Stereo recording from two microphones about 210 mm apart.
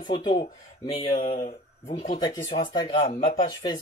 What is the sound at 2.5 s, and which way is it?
Speech, 20° left (ahead or behind).